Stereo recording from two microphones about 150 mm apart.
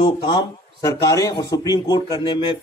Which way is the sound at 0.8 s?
20° left (ahead or behind).